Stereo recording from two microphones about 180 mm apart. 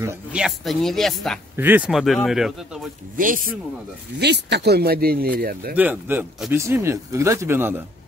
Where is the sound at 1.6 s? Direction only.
10° right (ahead or behind).